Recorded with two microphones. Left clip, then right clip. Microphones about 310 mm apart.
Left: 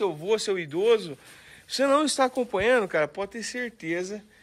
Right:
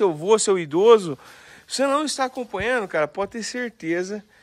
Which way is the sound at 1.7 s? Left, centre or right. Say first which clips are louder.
Right 1 dB; centre.